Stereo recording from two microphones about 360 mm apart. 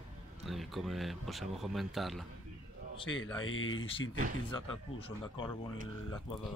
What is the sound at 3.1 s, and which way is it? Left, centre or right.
Speech, left.